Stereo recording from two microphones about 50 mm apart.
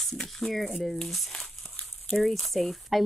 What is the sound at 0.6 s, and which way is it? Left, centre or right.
A woman's voice, centre.